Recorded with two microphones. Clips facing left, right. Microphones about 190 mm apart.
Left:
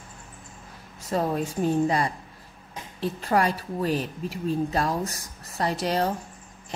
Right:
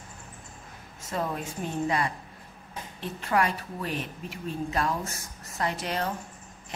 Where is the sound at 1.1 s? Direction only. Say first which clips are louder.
Left 6 dB; 35° left (ahead or behind).